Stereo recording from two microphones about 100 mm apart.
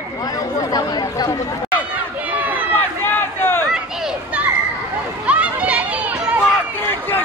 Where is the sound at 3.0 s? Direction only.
20° left (ahead or behind).